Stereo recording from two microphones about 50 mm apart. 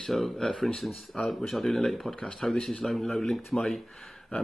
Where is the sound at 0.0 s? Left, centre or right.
Centre.